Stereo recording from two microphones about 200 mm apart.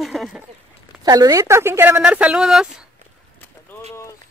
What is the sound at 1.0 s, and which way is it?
Speech, 20° right (ahead or behind).